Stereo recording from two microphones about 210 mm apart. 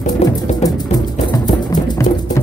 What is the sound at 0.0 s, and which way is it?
Music, 35° left (ahead or behind).